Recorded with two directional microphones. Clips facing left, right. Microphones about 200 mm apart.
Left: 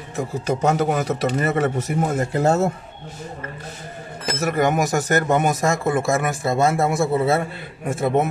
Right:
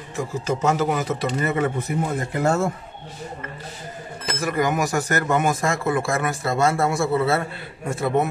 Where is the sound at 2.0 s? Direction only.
40° left (ahead or behind).